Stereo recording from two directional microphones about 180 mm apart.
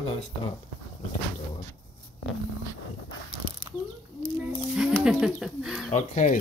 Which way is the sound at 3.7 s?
25° right (ahead or behind).